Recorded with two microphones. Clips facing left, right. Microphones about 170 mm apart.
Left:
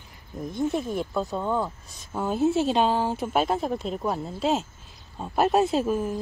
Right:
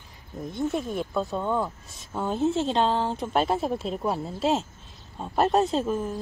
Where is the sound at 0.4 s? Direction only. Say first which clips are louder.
Left 1 dB; centre (ahead or behind).